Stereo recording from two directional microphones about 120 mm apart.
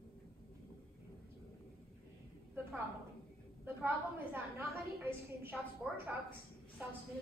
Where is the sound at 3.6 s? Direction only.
20° right (ahead or behind).